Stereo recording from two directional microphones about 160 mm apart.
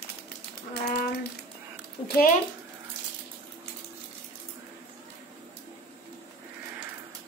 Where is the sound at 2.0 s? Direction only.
65° left (ahead or behind).